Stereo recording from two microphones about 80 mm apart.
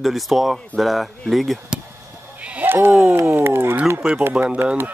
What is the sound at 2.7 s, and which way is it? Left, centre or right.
Speech, right.